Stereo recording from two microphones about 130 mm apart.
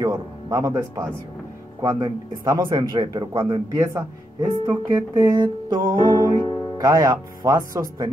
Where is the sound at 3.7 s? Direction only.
25° right (ahead or behind).